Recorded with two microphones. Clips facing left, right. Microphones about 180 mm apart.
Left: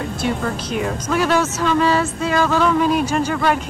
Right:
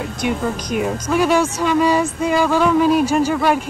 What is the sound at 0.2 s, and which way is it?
Speech, 10° right (ahead or behind).